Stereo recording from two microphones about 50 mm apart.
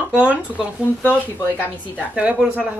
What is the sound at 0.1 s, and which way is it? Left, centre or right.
Speech, right.